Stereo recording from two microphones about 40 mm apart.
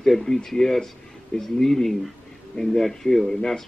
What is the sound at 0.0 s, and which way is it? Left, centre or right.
Speech, centre.